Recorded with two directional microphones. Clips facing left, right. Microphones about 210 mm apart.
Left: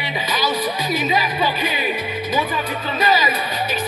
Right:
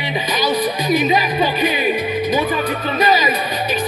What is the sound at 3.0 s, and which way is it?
Music, 15° right (ahead or behind).